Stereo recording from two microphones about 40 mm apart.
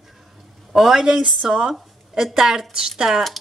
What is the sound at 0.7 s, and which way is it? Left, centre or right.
Speech, centre.